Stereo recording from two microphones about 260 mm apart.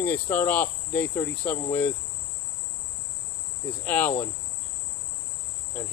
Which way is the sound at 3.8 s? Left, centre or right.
Centre.